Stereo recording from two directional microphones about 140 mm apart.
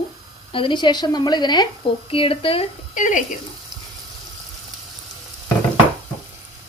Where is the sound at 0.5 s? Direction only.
40° left (ahead or behind).